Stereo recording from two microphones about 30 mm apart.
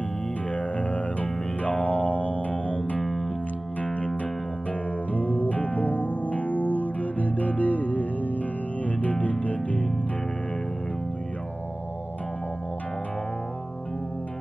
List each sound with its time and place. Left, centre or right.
0.7 s music: left
3.0 s music: centre
5.1 s music: left